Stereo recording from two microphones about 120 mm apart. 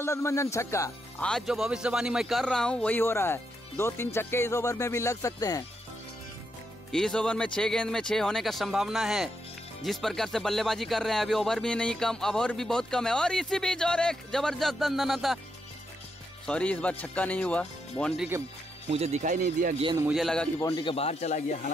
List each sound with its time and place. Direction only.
0.0 s speech: 25° left (ahead or behind)
1.2 s speech: 5° left (ahead or behind)
1.5 s speech: 5° right (ahead or behind); by 5.6 s 30° left (ahead or behind)
6.9 s speech: 5° left (ahead or behind)
16.4 s speech: 10° left (ahead or behind)
18.9 s speech: 65° right (ahead or behind)
20.2 s speech: 5° left (ahead or behind)
20.8 s speech: 55° left (ahead or behind); by 21.7 s 85° left